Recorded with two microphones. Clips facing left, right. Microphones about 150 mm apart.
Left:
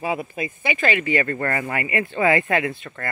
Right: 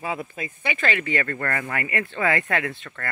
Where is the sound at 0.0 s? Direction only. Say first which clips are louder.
Left 4 dB; 15° left (ahead or behind).